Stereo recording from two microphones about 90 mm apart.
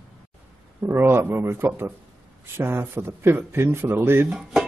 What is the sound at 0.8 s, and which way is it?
A man's voice, 25° right (ahead or behind).